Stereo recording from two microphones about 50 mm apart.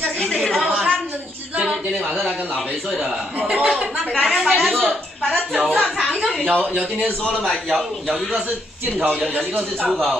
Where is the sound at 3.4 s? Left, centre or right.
Right.